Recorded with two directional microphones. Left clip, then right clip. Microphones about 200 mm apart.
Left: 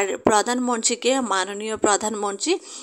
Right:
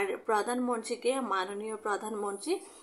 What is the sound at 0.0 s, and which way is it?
Speech, 35° left (ahead or behind).